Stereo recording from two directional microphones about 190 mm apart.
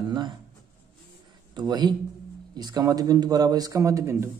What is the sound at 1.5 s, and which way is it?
Speech, 20° right (ahead or behind).